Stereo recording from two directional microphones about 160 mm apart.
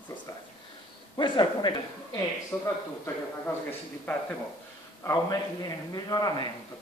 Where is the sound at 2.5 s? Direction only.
10° left (ahead or behind).